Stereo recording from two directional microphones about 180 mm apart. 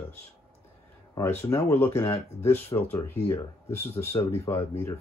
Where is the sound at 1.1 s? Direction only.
15° left (ahead or behind).